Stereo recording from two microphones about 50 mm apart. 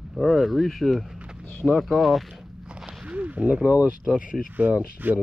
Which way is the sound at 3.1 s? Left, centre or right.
Right.